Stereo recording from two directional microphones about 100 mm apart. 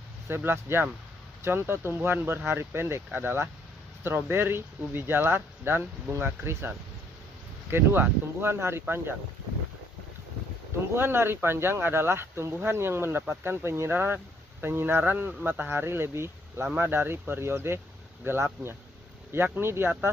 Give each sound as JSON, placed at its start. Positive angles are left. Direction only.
{"t": 0.3, "sound": "speech", "side_deg": -20}
{"t": 7.7, "sound": "speech", "side_deg": -25}
{"t": 11.0, "sound": "speech", "side_deg": -25}